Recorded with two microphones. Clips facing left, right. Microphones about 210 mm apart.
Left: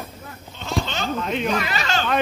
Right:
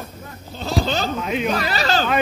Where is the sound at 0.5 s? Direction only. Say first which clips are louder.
Right 4 dB; 35° right (ahead or behind).